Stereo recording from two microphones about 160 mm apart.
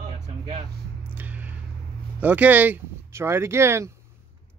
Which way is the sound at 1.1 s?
10° right (ahead or behind).